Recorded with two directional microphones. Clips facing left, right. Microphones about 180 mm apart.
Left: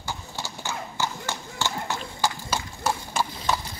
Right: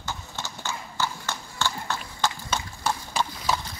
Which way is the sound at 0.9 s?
15° left (ahead or behind).